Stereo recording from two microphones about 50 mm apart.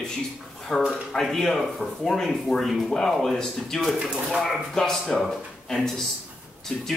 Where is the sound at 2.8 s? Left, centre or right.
Centre.